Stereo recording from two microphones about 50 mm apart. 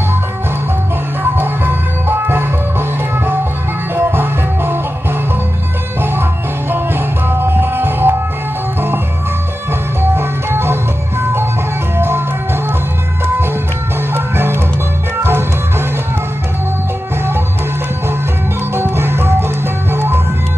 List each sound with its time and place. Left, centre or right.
1.3 s music: right
3.9 s music: right
6.7 s music: right
10.1 s music: right
14.1 s music: right
18.8 s music: right